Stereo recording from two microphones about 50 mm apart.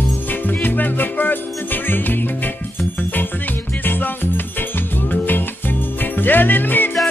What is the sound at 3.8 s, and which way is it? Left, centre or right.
Music, left.